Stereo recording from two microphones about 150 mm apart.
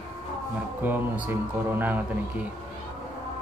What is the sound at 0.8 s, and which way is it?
Speech, 10° right (ahead or behind).